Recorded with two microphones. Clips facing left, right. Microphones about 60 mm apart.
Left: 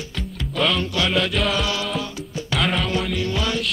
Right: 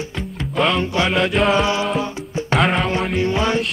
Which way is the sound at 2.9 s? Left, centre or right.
Right.